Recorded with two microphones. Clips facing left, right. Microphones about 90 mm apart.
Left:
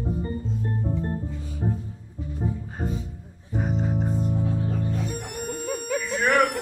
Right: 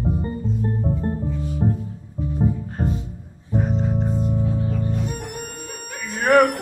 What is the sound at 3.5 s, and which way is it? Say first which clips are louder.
Music: right 4 dB; centre (ahead or behind).